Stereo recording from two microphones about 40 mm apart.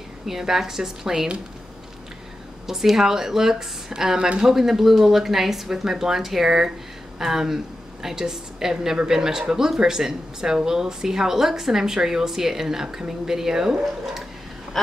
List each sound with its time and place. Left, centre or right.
0.3 s a woman's voice: centre
2.6 s a woman's voice: centre